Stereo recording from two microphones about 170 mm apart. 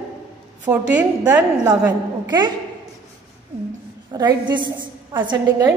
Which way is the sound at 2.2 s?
25° right (ahead or behind).